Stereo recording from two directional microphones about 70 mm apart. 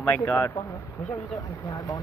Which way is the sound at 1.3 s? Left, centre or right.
Left.